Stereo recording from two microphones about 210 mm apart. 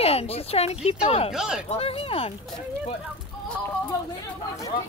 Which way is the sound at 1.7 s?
25° left (ahead or behind).